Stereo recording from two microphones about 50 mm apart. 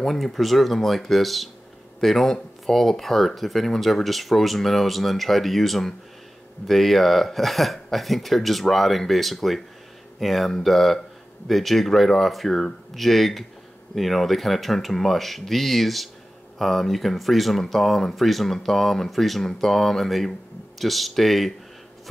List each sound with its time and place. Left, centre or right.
0.0 s speech: centre